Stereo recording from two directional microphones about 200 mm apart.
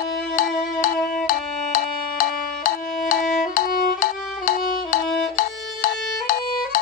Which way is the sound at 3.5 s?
45° left (ahead or behind).